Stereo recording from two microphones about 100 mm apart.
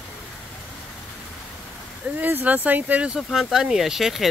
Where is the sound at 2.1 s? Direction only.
20° right (ahead or behind).